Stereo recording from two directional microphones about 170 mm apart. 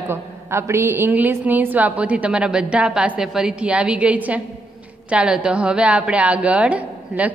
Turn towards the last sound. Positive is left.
turn(degrees=-10)  # may be behind; listen again after turning